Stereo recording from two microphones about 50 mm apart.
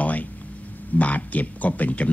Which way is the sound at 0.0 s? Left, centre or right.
Left.